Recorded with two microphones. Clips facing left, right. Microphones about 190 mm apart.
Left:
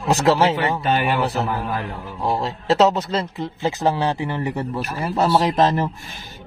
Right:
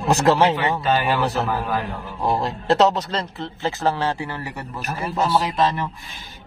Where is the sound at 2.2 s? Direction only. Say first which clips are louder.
Right 1 dB; centre (ahead or behind); by 4.7 s 25° left (ahead or behind).